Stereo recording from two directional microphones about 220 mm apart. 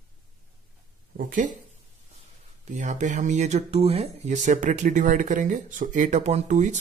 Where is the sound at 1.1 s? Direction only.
35° right (ahead or behind).